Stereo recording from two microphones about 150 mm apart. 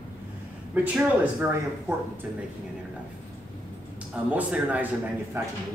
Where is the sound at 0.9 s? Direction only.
10° right (ahead or behind).